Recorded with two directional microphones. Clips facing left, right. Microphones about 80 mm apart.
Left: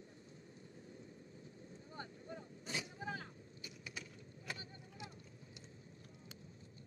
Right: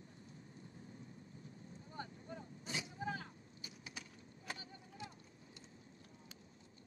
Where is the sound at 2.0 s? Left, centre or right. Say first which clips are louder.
Right 1 dB; left.